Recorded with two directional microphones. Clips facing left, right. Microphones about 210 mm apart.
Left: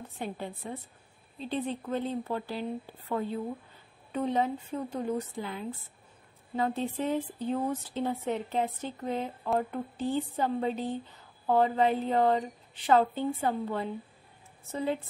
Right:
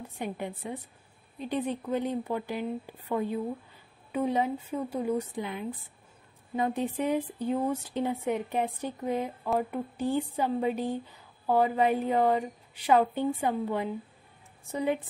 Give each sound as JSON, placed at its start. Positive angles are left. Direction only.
{"t": 0.2, "sound": "speech", "side_deg": -15}
{"t": 1.9, "sound": "speech", "side_deg": -15}